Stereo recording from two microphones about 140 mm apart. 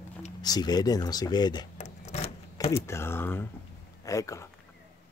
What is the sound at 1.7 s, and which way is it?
Keys jangling, 50° left (ahead or behind).